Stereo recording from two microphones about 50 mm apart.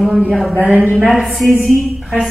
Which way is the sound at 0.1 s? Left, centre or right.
Centre.